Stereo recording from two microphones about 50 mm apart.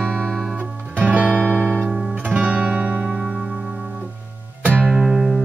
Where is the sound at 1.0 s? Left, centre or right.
Right.